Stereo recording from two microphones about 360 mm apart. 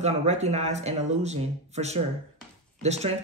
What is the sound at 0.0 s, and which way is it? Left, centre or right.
A woman's voice, centre.